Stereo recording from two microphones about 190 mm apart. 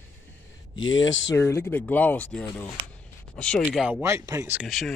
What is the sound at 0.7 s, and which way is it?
Speech, 90° left.